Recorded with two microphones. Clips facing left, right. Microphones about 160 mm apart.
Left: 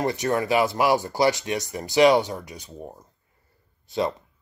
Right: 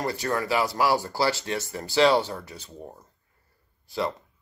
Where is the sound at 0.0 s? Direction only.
20° left (ahead or behind).